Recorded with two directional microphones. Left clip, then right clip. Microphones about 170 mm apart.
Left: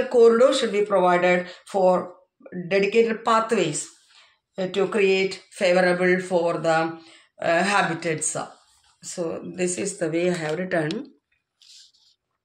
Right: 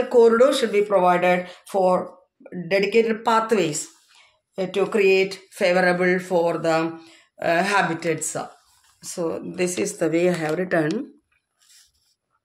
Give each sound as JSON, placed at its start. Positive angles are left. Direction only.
{"t": 0.1, "sound": "speech", "side_deg": -35}